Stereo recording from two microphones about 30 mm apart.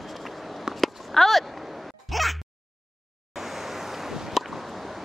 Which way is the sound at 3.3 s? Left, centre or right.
Centre.